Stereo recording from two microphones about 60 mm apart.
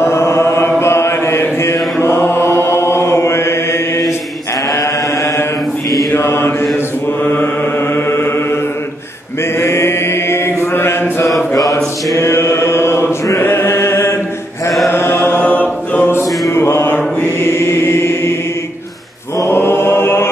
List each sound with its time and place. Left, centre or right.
0.0 s chant: left
6.1 s mantra: left
7.9 s mantra: left
9.6 s chant: left
11.5 s mantra: left
12.2 s chant: left
14.9 s mantra: left
15.4 s chant: left
16.5 s mantra: left
19.4 s mantra: left